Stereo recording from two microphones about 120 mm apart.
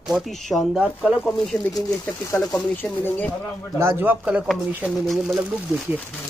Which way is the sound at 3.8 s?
20° right (ahead or behind).